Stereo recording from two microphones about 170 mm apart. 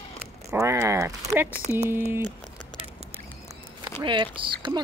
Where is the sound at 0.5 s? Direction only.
15° right (ahead or behind).